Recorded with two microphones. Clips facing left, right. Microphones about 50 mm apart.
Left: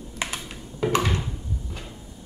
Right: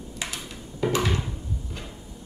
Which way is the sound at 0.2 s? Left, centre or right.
Left.